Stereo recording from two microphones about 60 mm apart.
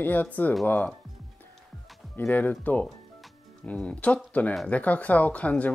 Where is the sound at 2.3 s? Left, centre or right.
Left.